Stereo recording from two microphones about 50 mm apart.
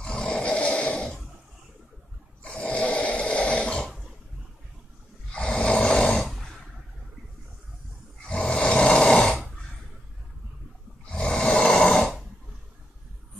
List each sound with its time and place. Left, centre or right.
0.3 s snoring: left
2.6 s snoring: left
5.3 s snoring: centre
5.9 s dog: centre
6.2 s a sound: centre
8.3 s snoring: centre
11.1 s snoring: centre